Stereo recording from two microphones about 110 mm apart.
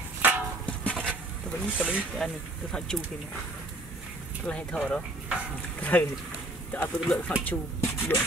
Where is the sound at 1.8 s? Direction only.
10° right (ahead or behind).